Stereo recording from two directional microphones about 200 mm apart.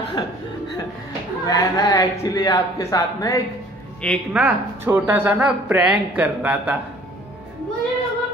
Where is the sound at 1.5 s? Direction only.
20° left (ahead or behind).